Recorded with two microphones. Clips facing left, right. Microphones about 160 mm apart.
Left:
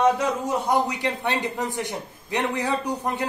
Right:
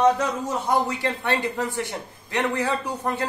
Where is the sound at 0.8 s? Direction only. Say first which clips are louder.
Even; 15° left (ahead or behind).